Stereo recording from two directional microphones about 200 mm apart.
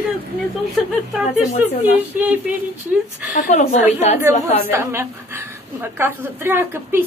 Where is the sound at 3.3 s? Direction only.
35° left (ahead or behind).